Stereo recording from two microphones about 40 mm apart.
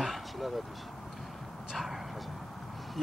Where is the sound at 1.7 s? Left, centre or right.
Centre.